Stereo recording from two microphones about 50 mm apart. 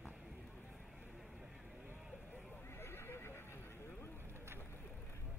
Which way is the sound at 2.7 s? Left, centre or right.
Left.